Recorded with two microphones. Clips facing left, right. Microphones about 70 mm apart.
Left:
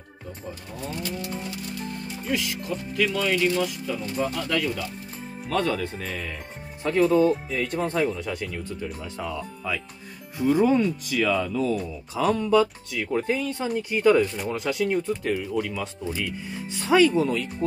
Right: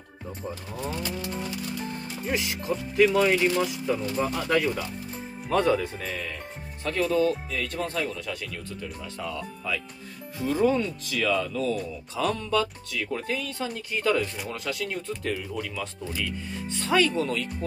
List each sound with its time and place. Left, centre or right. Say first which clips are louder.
2.3 s speech: even; right
5.5 s speech: right 2 dB; centre
6.8 s speech: left 5 dB; centre